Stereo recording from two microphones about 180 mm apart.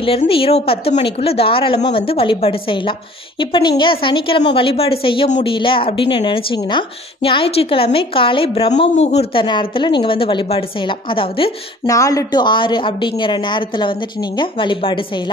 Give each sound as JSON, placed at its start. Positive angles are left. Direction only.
{"t": 0.0, "sound": "a woman's voice", "side_deg": 30}
{"t": 11.8, "sound": "a woman's voice", "side_deg": 20}